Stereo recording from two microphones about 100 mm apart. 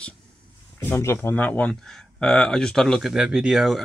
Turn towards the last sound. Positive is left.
turn(degrees=-5)  # may be behind; listen again after turning